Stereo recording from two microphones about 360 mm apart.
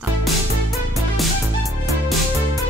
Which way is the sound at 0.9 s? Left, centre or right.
Centre.